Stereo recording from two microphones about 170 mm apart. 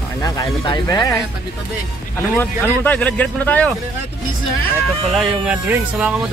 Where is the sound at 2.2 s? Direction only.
10° left (ahead or behind).